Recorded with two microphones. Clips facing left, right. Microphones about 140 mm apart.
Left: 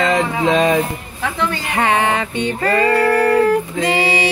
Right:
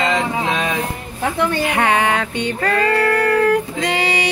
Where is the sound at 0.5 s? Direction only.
35° left (ahead or behind).